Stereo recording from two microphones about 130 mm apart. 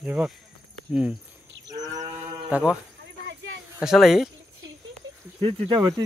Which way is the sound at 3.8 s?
Centre (ahead or behind).